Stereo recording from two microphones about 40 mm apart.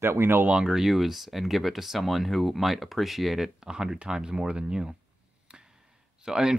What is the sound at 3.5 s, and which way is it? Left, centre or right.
Speech, centre.